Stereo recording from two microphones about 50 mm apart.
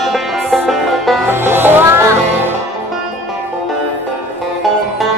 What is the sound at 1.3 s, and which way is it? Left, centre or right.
Music, right.